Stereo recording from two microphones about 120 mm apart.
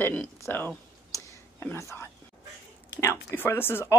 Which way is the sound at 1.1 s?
20° left (ahead or behind).